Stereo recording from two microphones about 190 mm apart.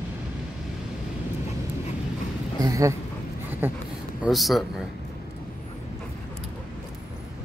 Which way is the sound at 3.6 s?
10° right (ahead or behind).